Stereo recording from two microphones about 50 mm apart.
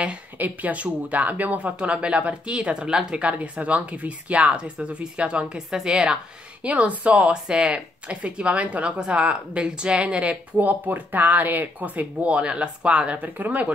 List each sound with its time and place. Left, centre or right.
0.0 s speech: right; by 3.3 s centre
3.3 s a woman's voice: right
6.6 s speech: right